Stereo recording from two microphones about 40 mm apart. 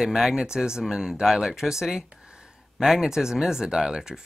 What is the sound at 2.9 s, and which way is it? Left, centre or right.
Speech, centre.